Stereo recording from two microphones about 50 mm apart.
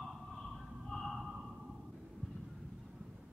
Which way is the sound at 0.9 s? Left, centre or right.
Centre.